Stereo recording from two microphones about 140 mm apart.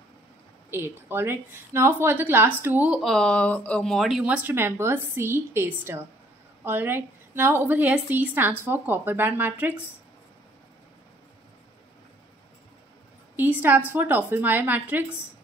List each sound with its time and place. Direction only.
0.7 s speech: 15° right (ahead or behind)
3.0 s speech: 5° left (ahead or behind); by 9.8 s 10° right (ahead or behind)
13.4 s speech: 10° right (ahead or behind)